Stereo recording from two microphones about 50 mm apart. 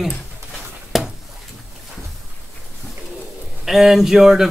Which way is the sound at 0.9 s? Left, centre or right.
Centre.